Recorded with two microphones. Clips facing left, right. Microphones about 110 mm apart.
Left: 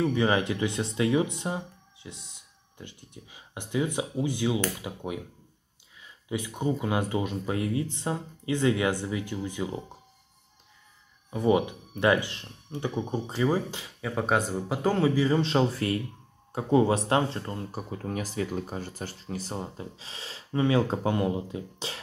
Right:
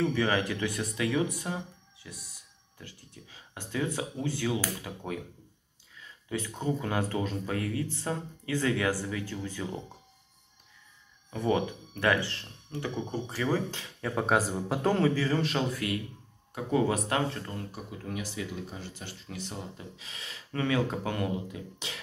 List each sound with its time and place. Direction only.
0.0 s speech: 20° left (ahead or behind)
11.2 s speech: 15° left (ahead or behind)
14.1 s a man's voice: centre (ahead or behind)
15.1 s speech: 20° left (ahead or behind)
17.6 s speech: 40° left (ahead or behind)